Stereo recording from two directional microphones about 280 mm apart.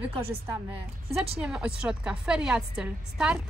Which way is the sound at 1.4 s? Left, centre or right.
Centre.